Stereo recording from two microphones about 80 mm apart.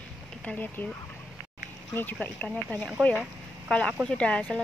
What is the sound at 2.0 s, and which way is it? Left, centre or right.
Speech, left.